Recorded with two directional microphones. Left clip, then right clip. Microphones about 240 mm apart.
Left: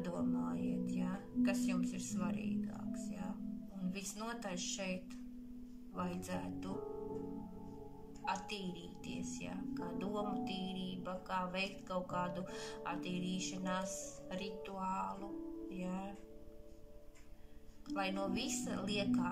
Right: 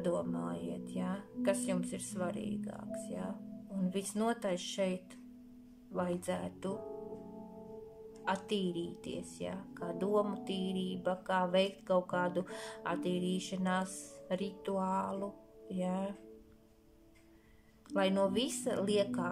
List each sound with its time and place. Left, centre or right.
0.0 s speech: right
3.9 s a woman's voice: right
5.9 s a woman's voice: right
8.3 s a woman's voice: right
17.8 s a woman's voice: right